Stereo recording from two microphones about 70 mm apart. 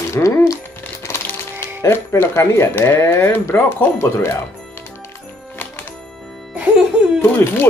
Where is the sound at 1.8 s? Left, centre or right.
Left.